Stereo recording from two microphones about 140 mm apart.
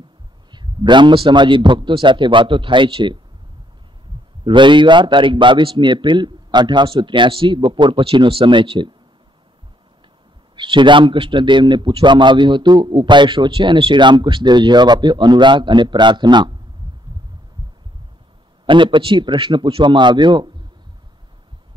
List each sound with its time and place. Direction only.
0.5 s a man's voice: 35° right (ahead or behind)
4.5 s a man's voice: 35° right (ahead or behind)
10.5 s a man's voice: 35° right (ahead or behind)
18.7 s a man's voice: 35° right (ahead or behind)